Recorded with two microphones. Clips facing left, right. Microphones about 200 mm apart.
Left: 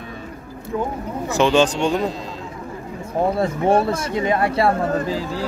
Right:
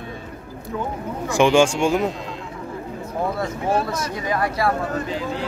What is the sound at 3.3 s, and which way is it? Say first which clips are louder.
Speech: left 6 dB; 25° left (ahead or behind).